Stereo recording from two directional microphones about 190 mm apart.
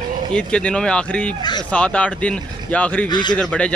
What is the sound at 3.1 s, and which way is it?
Speech, 25° left (ahead or behind).